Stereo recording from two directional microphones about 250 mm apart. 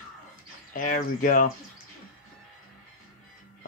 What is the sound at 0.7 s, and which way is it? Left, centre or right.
Speech, left.